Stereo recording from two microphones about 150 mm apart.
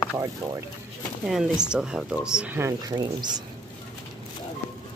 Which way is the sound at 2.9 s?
30° right (ahead or behind).